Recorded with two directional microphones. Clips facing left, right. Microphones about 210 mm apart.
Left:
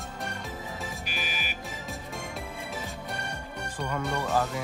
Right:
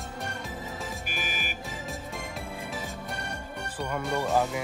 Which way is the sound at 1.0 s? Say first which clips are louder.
Right 1 dB; 50° right (ahead or behind).